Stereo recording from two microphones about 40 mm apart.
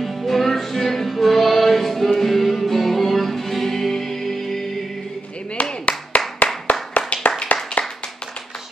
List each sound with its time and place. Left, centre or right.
0.0 s music: centre
5.9 s clapping: left
7.8 s clapping: left